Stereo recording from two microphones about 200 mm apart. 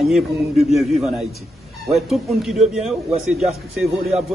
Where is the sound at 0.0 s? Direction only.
Centre (ahead or behind).